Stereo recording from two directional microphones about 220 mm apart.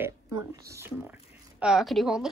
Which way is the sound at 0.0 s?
15° right (ahead or behind).